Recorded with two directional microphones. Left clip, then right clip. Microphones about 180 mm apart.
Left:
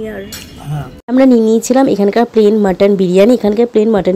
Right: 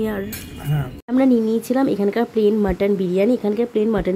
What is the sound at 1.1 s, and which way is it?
A woman's voice, 25° left (ahead or behind).